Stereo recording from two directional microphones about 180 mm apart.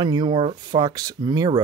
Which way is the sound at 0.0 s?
25° right (ahead or behind).